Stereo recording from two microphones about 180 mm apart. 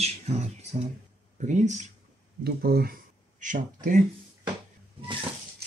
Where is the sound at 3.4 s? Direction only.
45° right (ahead or behind).